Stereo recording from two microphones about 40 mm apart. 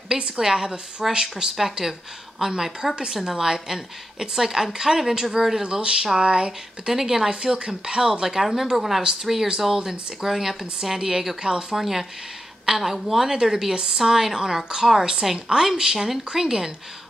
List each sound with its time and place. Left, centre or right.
0.4 s a woman's voice: centre
11.7 s a woman's voice: centre